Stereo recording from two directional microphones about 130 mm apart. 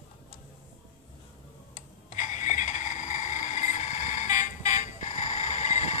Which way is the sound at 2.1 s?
70° left (ahead or behind).